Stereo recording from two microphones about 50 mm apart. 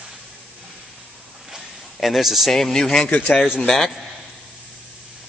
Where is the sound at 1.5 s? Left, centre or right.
Centre.